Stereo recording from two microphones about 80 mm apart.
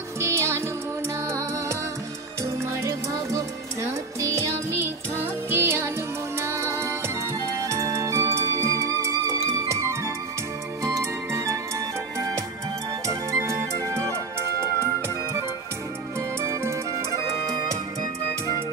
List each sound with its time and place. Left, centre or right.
0.2 s music: right
2.6 s music: right
13.0 s music: right
16.3 s music: right